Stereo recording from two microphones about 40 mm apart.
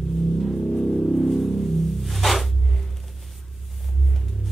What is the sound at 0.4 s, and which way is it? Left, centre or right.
Music, centre.